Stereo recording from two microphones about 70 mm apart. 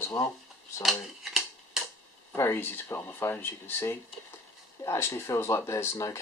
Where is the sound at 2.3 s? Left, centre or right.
Left.